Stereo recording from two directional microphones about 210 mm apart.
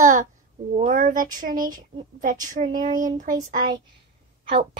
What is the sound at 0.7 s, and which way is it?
Speech, 35° right (ahead or behind).